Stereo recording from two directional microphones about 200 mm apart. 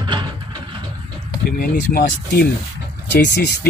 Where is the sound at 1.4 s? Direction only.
45° left (ahead or behind).